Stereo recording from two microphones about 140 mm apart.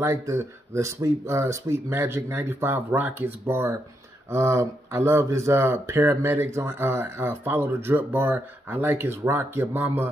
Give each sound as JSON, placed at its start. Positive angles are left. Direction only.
{"t": 0.0, "sound": "speech", "side_deg": -20}